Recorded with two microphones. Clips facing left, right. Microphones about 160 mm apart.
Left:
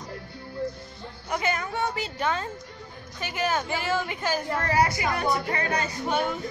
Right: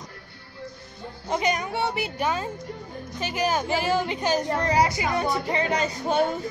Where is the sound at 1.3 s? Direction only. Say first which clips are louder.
Right 3 dB; 15° right (ahead or behind).